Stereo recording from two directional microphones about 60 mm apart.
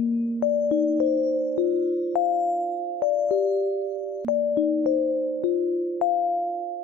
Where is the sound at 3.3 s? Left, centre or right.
Centre.